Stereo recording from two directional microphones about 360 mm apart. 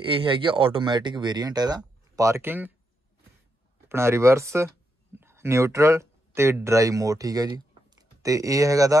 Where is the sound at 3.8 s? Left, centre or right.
Centre.